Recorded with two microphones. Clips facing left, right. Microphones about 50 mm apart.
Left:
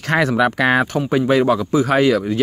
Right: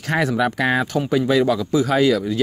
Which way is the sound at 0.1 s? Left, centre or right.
Left.